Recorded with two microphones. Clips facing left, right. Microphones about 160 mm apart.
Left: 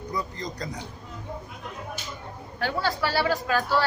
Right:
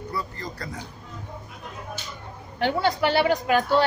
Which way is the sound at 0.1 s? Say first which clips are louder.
Left 2 dB; 20° left (ahead or behind).